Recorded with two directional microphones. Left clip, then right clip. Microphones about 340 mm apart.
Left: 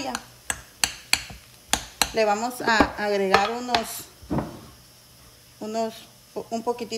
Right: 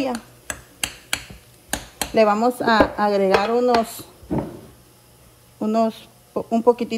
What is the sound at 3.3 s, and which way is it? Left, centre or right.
Chopping, centre.